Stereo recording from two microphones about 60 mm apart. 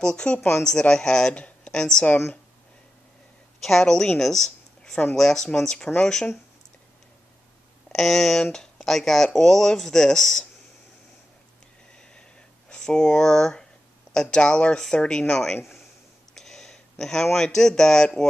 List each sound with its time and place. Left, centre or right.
0.0 s speech: centre
1.3 s a sound: left
1.7 s speech: centre
3.6 s speech: centre
4.2 s a sound: centre
5.1 s speech: centre
7.9 s speech: centre
12.0 s a sound: centre
14.1 s speech: centre